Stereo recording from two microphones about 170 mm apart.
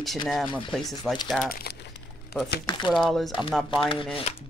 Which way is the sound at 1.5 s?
65° left (ahead or behind).